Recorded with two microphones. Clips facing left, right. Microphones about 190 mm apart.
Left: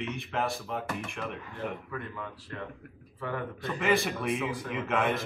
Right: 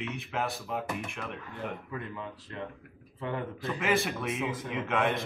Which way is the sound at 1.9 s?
20° right (ahead or behind).